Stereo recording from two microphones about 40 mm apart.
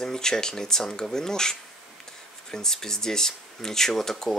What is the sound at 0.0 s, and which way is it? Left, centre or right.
Speech, centre.